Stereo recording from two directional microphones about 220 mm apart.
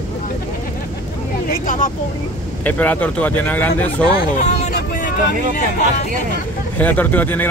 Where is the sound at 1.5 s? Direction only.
40° left (ahead or behind).